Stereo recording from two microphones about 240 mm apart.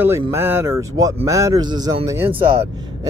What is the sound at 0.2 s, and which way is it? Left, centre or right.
A man's voice, centre.